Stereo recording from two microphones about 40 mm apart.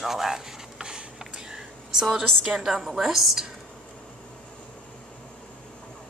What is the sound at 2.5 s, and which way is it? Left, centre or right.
A woman's voice, centre.